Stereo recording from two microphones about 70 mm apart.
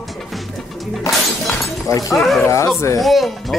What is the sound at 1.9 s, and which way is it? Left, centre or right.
Speech, left.